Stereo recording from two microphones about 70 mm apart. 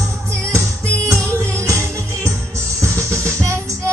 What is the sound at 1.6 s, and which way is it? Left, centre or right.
Music, right.